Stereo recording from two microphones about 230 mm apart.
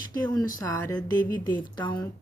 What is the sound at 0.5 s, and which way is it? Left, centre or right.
A woman's voice, centre.